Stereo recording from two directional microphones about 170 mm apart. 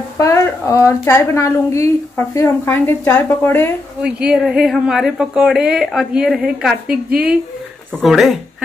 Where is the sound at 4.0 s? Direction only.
5° right (ahead or behind).